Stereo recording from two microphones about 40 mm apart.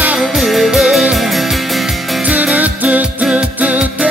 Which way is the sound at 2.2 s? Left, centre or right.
Right.